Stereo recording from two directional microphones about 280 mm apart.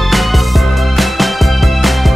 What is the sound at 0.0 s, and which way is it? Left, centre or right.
Music, centre.